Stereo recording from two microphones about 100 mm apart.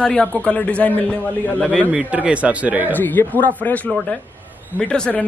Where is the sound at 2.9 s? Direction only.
20° left (ahead or behind).